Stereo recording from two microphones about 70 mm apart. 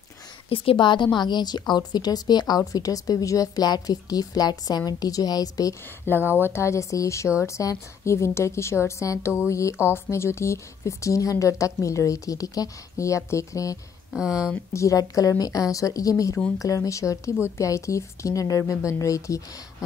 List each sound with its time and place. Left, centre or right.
0.8 s a woman's voice: left
6.1 s a woman's voice: left
14.1 s speech: centre
14.7 s a woman's voice: left